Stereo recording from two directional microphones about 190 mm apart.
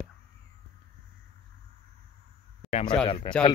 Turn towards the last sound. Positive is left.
turn(degrees=25)  # may be behind; listen again after turning